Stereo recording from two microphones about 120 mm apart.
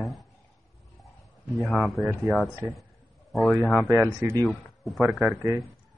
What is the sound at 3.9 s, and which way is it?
Speech, 30° right (ahead or behind).